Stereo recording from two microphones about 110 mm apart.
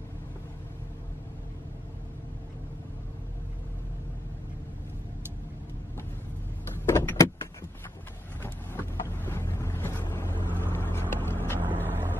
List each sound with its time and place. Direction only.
6.9 s vehicle: 25° left (ahead or behind)
8.4 s boat: 20° left (ahead or behind)
11.8 s vehicle: 20° left (ahead or behind)